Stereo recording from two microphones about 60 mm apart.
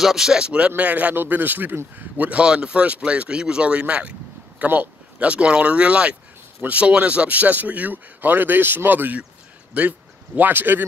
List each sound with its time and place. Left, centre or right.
0.0 s speech: centre; by 10.9 s right